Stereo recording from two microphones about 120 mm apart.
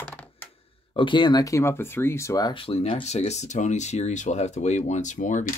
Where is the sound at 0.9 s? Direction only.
40° left (ahead or behind).